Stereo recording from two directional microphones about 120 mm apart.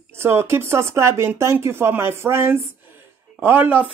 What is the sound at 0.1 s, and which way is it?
Speech, 20° right (ahead or behind).